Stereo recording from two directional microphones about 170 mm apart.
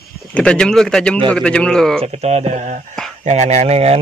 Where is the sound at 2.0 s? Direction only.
40° right (ahead or behind).